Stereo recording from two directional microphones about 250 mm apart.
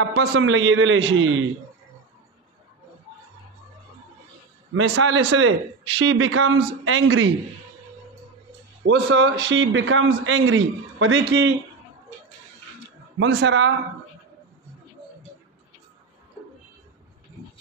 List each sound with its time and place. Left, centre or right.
0.1 s a man's voice: right
4.7 s a man's voice: right
8.8 s a man's voice: right
13.2 s a man's voice: right